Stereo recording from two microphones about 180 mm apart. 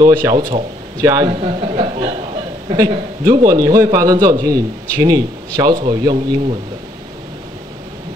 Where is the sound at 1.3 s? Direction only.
30° right (ahead or behind).